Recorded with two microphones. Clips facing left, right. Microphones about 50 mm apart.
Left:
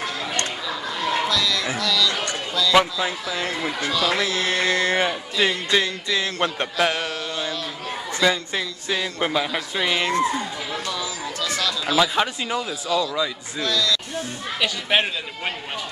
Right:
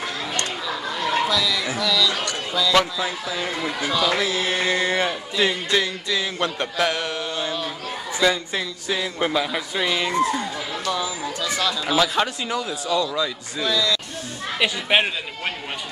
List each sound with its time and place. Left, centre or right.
0.7 s a sound: centre
1.8 s music: centre
2.7 s a man's voice: centre
3.3 s speech: centre
3.8 s music: centre
4.9 s a man's voice: centre
7.1 s a sound: centre
8.2 s a man's voice: centre
10.9 s speech: centre
12.0 s a man's voice: centre
13.6 s music: centre